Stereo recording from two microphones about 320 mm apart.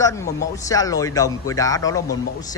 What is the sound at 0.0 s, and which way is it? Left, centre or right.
Speech, centre.